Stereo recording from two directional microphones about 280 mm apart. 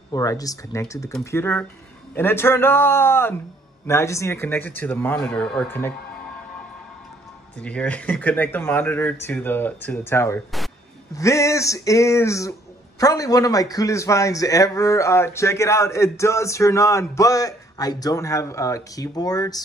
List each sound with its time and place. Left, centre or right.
0.1 s a man's voice: centre
7.6 s a man's voice: centre